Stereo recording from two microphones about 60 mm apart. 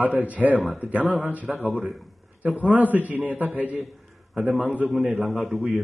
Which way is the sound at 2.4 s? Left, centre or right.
Right.